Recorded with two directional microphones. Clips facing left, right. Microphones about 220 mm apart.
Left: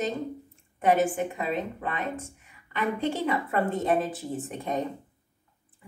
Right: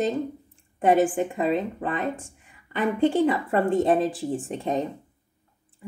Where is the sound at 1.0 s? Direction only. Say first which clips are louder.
Right 4 dB; 30° right (ahead or behind).